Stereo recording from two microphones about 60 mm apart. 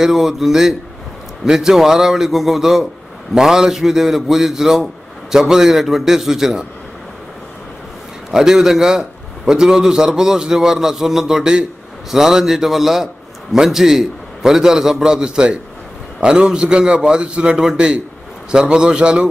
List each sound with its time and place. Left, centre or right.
0.0 s a man's voice: centre
8.3 s a man's voice: centre